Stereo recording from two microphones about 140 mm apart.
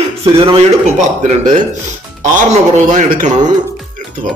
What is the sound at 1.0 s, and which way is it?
Speech, 60° right (ahead or behind).